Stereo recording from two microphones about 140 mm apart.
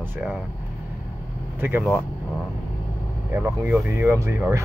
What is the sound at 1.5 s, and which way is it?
Speech, 15° right (ahead or behind).